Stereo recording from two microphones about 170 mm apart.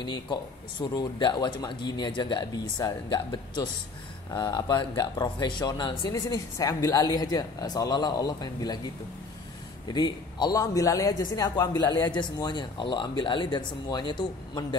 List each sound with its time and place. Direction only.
0.0 s speech: 25° left (ahead or behind)
9.9 s speech: 25° left (ahead or behind)